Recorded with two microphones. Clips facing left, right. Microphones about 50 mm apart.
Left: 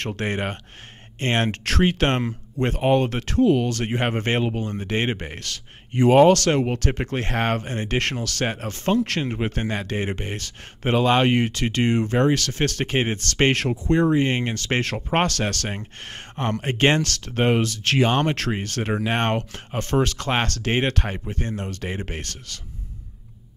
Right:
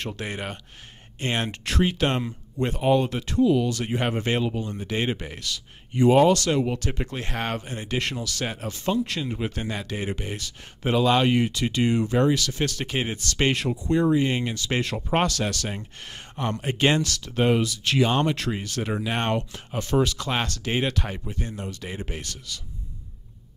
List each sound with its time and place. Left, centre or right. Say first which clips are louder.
0.0 s speech: left 5 dB; left
18.0 s speech: left 1 dB; left